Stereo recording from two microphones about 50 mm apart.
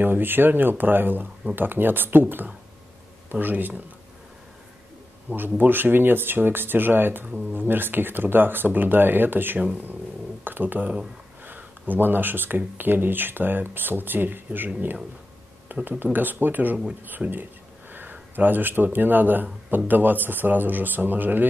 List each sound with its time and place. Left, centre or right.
0.0 s speech: right
5.3 s speech: right
15.7 s speech: right
17.2 s speech: right
18.3 s speech: right